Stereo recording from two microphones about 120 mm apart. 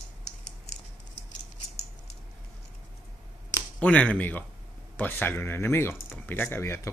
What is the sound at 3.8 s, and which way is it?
Speech, 10° left (ahead or behind).